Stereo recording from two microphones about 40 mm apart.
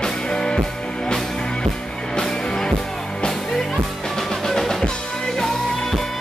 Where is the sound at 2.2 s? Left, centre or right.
Centre.